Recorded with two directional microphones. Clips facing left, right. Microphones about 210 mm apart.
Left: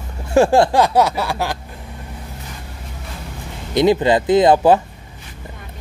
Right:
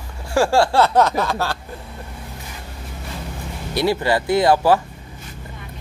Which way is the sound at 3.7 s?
20° left (ahead or behind).